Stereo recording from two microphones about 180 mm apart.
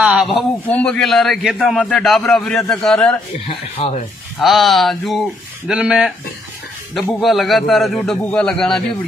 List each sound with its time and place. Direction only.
0.0 s a sound: 5° right (ahead or behind)
0.7 s a man's voice: 5° left (ahead or behind)
3.8 s speech: 30° left (ahead or behind)
4.4 s a man's voice: centre (ahead or behind)